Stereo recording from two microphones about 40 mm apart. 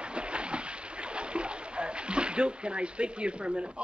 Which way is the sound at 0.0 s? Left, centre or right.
Right.